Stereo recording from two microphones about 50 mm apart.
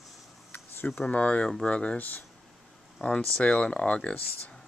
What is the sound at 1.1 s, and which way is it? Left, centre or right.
Speech, left.